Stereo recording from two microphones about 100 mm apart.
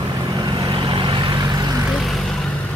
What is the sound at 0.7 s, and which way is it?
Vehicle, 55° right (ahead or behind).